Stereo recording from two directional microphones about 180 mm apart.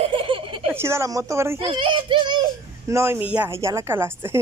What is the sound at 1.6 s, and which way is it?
A child's voice, 30° right (ahead or behind).